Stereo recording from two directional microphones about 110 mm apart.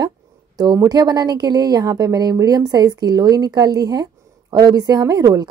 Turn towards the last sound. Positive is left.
turn(degrees=-35)  # may be behind; listen again after turning